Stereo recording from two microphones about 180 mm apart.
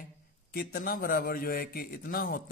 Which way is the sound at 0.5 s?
55° left (ahead or behind).